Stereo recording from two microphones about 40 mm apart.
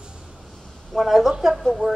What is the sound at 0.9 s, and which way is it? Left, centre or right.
Speech, centre.